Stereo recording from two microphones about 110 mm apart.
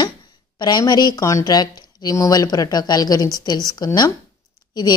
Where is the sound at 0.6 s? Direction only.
40° left (ahead or behind).